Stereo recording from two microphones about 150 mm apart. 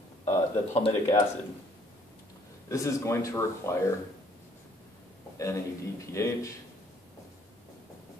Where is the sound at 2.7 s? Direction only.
20° left (ahead or behind).